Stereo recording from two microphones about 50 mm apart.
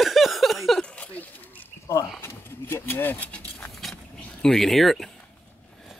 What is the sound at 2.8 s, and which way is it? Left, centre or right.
Speech, left.